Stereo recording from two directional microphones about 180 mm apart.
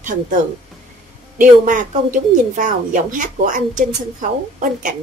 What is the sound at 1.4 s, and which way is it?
A woman's voice, 45° right (ahead or behind).